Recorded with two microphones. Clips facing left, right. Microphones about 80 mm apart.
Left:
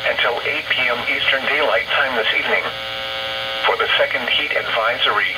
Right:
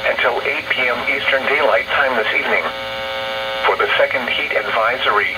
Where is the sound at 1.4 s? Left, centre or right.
Right.